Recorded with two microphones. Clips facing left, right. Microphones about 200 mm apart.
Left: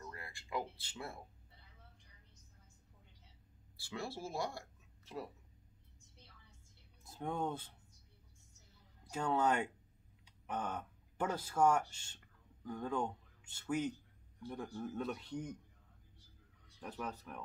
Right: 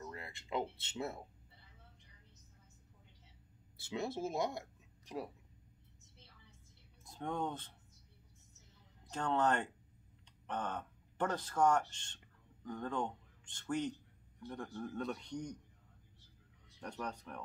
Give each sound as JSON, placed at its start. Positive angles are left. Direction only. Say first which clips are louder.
{"t": 0.0, "sound": "speech", "louder": "right 3 dB", "side_deg": -20}
{"t": 3.7, "sound": "speech", "louder": "right 4 dB", "side_deg": -20}
{"t": 7.1, "sound": "speech", "louder": "even", "side_deg": 5}
{"t": 9.1, "sound": "a man's voice", "louder": "even", "side_deg": 10}
{"t": 16.8, "sound": "a man's voice", "louder": "right 1 dB", "side_deg": 5}